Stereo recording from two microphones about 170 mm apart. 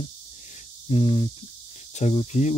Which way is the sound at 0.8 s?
35° left (ahead or behind).